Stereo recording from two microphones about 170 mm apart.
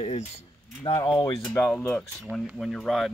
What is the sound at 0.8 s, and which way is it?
Speech, 30° left (ahead or behind).